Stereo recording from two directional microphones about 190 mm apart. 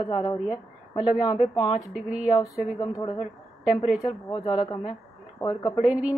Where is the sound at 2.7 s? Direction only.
15° left (ahead or behind).